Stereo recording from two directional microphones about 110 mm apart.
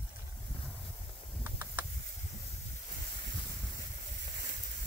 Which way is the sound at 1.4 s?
20° right (ahead or behind).